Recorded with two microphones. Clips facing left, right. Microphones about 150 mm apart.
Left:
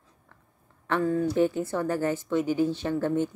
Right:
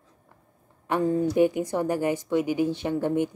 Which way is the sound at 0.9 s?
20° right (ahead or behind).